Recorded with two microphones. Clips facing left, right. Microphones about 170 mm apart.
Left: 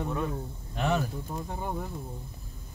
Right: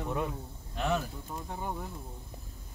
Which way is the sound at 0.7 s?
65° left (ahead or behind).